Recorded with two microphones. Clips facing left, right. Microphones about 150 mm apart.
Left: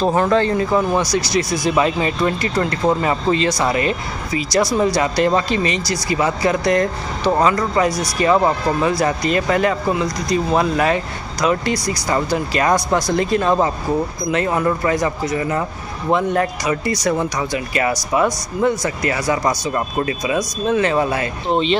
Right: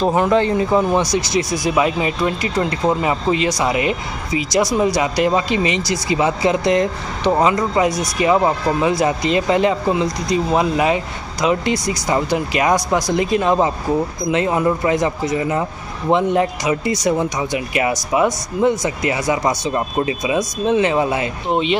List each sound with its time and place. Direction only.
0.0 s speech: 15° right (ahead or behind)